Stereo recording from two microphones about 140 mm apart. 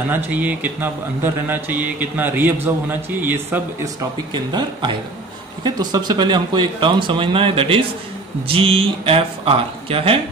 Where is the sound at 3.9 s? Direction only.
30° right (ahead or behind).